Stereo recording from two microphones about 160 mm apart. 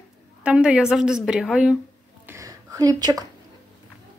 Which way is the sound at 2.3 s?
20° right (ahead or behind).